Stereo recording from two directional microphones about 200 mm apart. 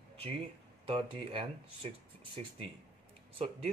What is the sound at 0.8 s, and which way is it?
Speech, 25° right (ahead or behind).